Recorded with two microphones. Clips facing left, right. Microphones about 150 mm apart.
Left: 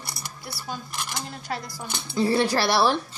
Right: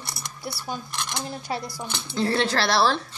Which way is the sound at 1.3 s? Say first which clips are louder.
Right 2 dB; 20° right (ahead or behind).